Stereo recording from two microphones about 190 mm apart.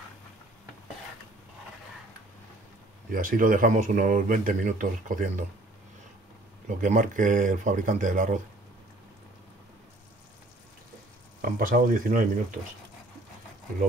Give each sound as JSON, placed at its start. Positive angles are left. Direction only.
{"t": 3.1, "sound": "speech", "side_deg": -45}
{"t": 6.8, "sound": "speech", "side_deg": -45}
{"t": 11.5, "sound": "speech", "side_deg": -45}